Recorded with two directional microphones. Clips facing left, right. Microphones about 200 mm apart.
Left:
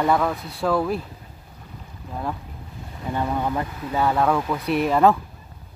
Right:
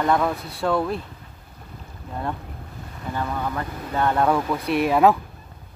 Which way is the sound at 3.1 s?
20° left (ahead or behind).